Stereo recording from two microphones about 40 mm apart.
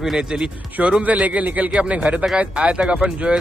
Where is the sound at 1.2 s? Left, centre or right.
Right.